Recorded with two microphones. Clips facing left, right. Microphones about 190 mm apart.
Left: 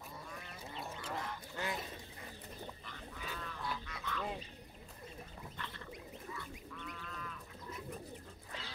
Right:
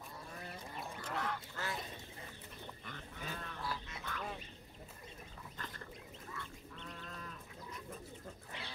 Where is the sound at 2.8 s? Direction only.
40° right (ahead or behind).